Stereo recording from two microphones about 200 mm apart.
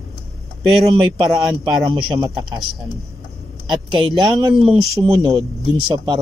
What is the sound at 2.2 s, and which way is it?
Speech, 20° right (ahead or behind).